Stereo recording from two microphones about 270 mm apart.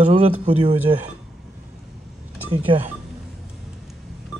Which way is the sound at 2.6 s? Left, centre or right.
Centre.